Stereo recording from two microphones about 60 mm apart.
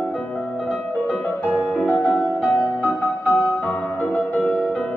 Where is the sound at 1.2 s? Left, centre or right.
Left.